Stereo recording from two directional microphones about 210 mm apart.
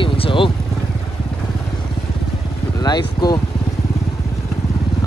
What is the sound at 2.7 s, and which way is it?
Speech, 20° left (ahead or behind).